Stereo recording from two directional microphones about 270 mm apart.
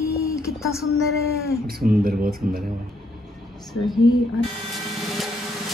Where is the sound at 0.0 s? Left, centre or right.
Centre.